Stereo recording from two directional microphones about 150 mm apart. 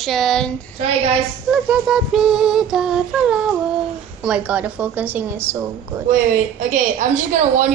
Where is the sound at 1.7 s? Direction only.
5° right (ahead or behind).